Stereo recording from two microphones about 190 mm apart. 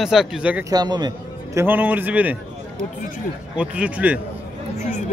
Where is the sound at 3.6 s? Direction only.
5° right (ahead or behind).